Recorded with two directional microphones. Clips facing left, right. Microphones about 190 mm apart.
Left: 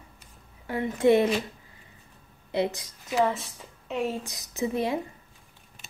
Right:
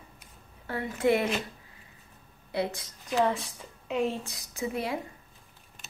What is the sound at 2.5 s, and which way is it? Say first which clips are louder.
Speech: left 4 dB; 20° left (ahead or behind).